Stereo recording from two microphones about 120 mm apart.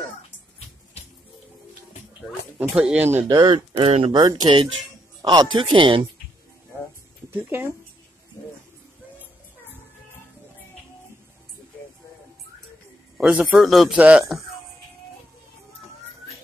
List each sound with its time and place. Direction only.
2.7 s speech: 10° right (ahead or behind)
3.3 s speech: 35° right (ahead or behind)
3.5 s speech: 55° right (ahead or behind)
4.2 s speech: 35° right (ahead or behind)
7.2 s speech: 20° right (ahead or behind)
13.2 s a man's voice: 10° right (ahead or behind)